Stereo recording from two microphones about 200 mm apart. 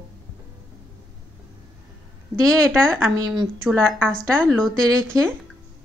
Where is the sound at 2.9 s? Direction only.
15° right (ahead or behind).